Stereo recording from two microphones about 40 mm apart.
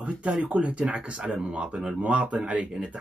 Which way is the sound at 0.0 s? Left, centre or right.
Right.